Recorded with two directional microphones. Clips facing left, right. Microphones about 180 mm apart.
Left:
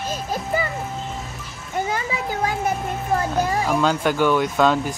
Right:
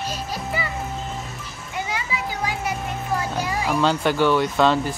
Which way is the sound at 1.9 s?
50° left (ahead or behind).